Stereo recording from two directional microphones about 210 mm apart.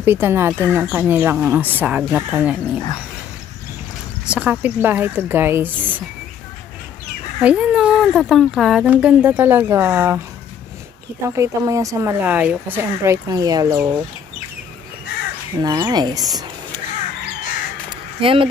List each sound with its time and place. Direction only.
0.0 s speech: 10° right (ahead or behind)
4.3 s speech: 5° right (ahead or behind)
7.4 s speech: 5° right (ahead or behind)
11.2 s speech: 15° right (ahead or behind)
15.6 s speech: 20° right (ahead or behind)
18.2 s speech: 25° right (ahead or behind)